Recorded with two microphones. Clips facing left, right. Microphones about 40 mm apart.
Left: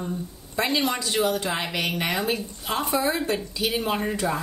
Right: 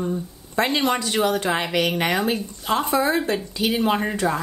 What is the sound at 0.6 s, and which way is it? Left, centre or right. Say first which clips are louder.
A woman's voice: right 4 dB; right.